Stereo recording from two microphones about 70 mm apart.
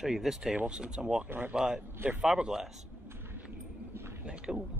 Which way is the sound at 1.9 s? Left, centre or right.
Right.